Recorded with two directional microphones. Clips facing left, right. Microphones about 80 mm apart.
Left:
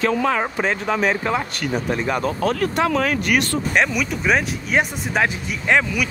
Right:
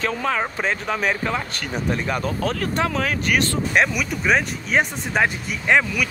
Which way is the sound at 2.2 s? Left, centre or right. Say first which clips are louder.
Left 3 dB; left.